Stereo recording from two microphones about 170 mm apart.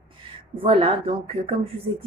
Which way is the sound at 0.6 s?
30° right (ahead or behind).